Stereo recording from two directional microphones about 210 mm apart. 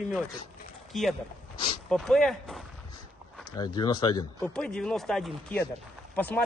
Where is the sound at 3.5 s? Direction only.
20° left (ahead or behind).